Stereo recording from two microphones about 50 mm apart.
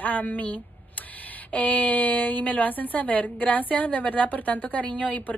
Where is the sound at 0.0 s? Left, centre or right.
Left.